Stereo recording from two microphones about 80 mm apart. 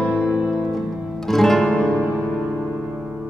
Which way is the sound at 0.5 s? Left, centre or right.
Centre.